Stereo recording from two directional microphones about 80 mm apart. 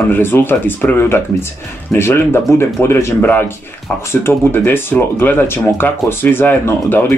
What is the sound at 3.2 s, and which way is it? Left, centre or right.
Speech, left.